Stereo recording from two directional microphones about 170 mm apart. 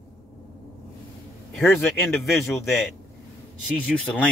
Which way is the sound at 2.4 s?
15° left (ahead or behind).